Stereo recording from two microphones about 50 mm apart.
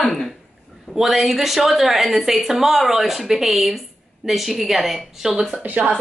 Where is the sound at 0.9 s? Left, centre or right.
Centre.